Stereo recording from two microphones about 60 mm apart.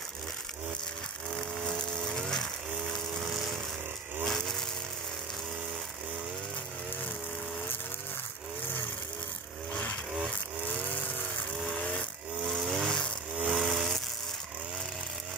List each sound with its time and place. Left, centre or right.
2.0 s ratchet: centre
2.9 s a sound: centre
9.7 s vehicle: left
10.7 s chainsaw: left
12.5 s vehicle: centre
13.4 s a sound: centre